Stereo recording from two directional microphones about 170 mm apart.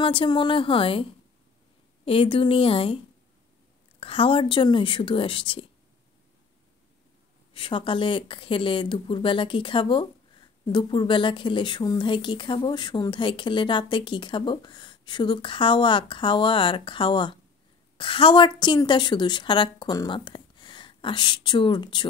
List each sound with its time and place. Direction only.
0.0 s speech: 30° left (ahead or behind)
2.0 s speech: 30° left (ahead or behind)
4.0 s speech: 30° left (ahead or behind)
7.5 s speech: 30° left (ahead or behind)